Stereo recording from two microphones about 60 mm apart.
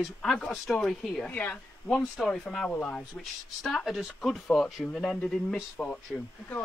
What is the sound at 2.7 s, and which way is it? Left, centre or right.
Speech, left.